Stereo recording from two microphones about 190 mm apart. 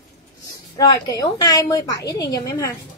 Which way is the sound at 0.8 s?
20° left (ahead or behind).